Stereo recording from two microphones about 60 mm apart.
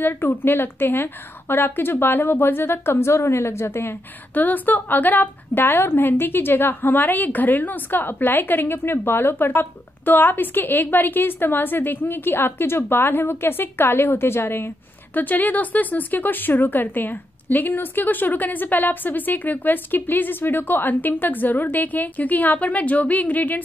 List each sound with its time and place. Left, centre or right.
0.0 s a woman's voice: left
4.3 s a woman's voice: left
15.1 s a woman's voice: left